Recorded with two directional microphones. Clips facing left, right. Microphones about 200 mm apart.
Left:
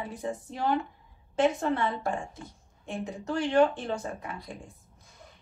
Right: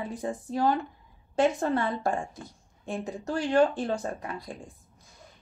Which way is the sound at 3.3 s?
40° right (ahead or behind).